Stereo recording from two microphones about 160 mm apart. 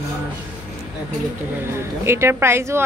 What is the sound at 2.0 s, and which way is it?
Speech, 15° right (ahead or behind).